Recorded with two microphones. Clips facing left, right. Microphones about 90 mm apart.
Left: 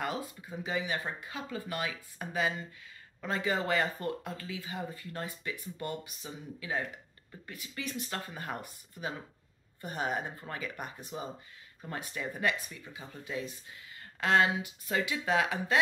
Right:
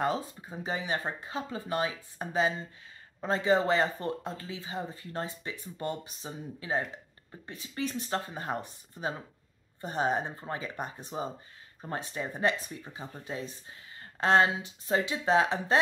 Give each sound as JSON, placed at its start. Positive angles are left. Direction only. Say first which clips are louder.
{"t": 0.0, "sound": "speech", "louder": "right 5 dB", "side_deg": -30}